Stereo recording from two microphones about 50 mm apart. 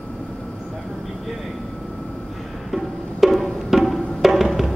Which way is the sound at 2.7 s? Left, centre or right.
Centre.